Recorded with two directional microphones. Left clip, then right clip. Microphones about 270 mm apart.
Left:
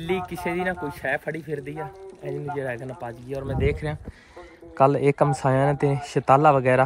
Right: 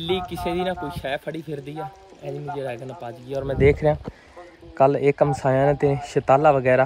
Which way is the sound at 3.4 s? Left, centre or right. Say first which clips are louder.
Right 9 dB; right.